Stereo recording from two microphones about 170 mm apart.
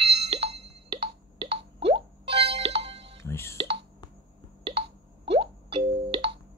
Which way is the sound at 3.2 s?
15° left (ahead or behind).